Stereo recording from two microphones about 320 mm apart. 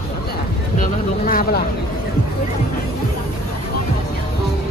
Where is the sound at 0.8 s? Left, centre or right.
Left.